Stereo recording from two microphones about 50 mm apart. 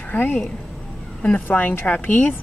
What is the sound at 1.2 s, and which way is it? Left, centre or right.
Speech, left.